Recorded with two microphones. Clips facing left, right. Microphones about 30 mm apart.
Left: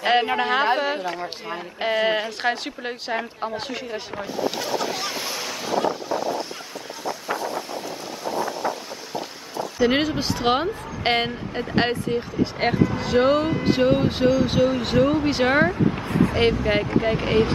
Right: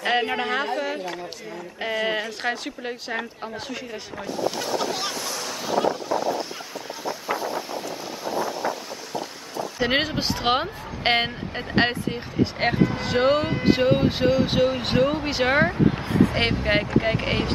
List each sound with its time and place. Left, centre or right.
0.2 s speech: centre
0.7 s speech: left
4.7 s waves: centre
5.1 s waves: centre
5.7 s vehicle: centre
8.3 s boat: centre
9.8 s speech: centre
16.6 s speech: centre